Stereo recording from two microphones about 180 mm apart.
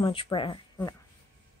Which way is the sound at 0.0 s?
30° left (ahead or behind).